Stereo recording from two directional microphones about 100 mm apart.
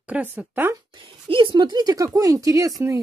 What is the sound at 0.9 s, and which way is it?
Speech, 55° right (ahead or behind).